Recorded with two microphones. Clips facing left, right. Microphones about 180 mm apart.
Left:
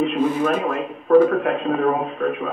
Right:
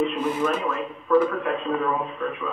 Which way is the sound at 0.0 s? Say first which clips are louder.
Left 4 dB; 55° left (ahead or behind).